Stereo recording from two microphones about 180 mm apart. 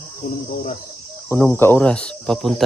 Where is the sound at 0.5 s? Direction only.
45° left (ahead or behind).